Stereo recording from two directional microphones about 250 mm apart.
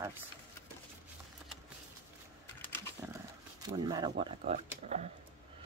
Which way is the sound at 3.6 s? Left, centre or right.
Centre.